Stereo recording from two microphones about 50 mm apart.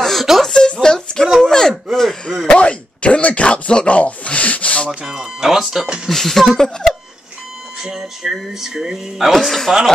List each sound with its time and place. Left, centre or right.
0.0 s a sound: centre
0.5 s a sound: centre
1.4 s speech: centre
5.0 s speech: centre
6.0 s speech: centre
7.8 s speech: centre